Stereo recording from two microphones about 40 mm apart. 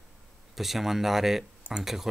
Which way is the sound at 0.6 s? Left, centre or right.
Centre.